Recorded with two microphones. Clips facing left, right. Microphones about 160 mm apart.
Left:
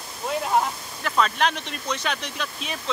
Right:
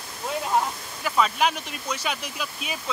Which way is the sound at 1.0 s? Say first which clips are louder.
Even; 10° right (ahead or behind).